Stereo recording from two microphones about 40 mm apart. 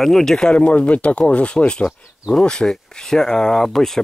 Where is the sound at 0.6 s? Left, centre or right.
Left.